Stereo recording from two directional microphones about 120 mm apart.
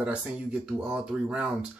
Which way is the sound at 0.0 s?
10° right (ahead or behind).